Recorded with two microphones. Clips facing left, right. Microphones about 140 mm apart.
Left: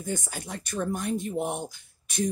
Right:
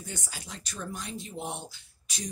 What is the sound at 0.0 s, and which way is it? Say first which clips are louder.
Speech: left 9 dB; 50° left (ahead or behind).